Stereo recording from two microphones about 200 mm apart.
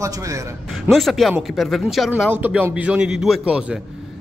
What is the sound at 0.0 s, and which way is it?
Speech, 15° right (ahead or behind).